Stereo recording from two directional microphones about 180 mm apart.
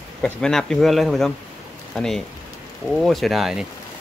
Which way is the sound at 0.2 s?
5° left (ahead or behind).